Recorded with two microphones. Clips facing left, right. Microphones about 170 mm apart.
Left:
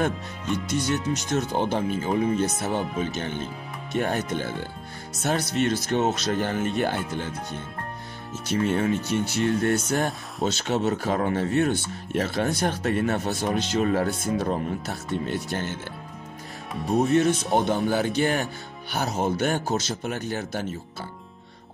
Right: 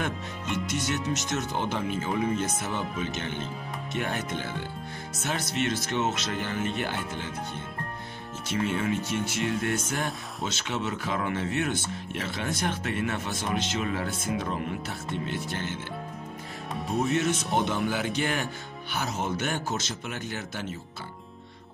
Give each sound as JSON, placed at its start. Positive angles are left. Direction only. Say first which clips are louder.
{"t": 0.7, "sound": "speech", "louder": "left 5 dB", "side_deg": 35}
{"t": 8.5, "sound": "speech", "louder": "left 5 dB", "side_deg": 40}
{"t": 17.6, "sound": "speech", "louder": "left 5 dB", "side_deg": 40}